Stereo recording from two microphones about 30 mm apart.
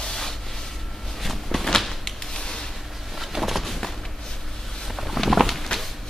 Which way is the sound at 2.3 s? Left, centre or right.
Left.